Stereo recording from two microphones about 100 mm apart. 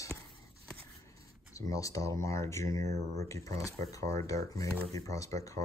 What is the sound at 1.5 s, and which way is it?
Speech, 35° left (ahead or behind).